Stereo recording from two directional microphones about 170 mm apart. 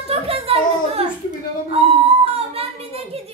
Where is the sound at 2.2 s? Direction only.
35° right (ahead or behind).